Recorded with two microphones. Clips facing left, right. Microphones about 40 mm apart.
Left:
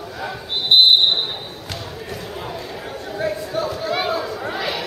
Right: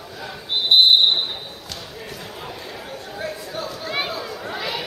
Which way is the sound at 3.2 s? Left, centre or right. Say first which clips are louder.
Left 7 dB; centre.